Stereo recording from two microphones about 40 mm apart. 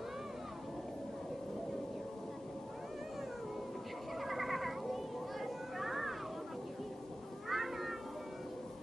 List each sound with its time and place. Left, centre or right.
4.2 s children playing: centre
7.4 s cat: centre